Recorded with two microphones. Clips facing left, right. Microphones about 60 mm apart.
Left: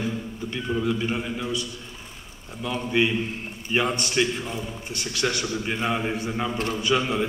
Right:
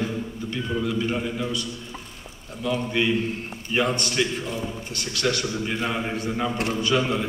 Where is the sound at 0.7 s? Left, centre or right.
Centre.